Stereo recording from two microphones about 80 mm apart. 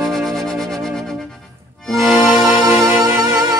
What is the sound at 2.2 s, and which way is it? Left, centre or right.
Music, centre.